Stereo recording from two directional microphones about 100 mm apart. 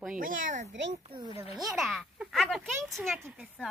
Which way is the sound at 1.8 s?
5° right (ahead or behind).